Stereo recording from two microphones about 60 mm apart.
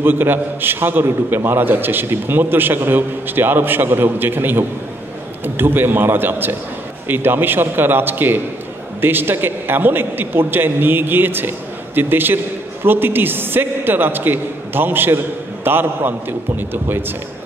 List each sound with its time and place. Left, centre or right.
0.0 s a man's voice: right